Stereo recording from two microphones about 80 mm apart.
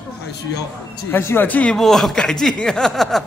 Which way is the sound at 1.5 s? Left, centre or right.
Centre.